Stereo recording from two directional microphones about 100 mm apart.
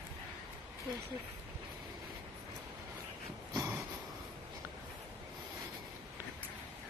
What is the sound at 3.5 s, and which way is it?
Snort, 30° right (ahead or behind).